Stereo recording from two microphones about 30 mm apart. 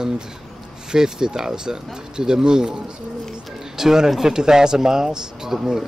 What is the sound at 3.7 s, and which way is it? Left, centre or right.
Speech, centre.